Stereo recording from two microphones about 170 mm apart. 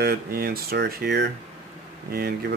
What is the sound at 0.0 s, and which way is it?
Speech, 60° right (ahead or behind).